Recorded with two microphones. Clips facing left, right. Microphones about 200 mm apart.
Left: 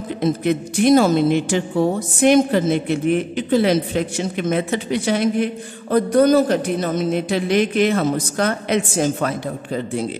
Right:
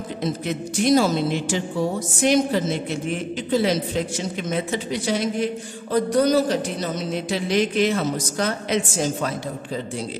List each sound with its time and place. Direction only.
0.2 s a woman's voice: 55° left (ahead or behind)